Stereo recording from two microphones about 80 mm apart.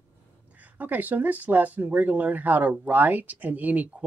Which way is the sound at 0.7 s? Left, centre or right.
Right.